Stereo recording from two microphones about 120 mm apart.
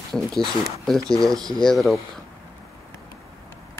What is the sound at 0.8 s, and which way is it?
Speech, centre (ahead or behind).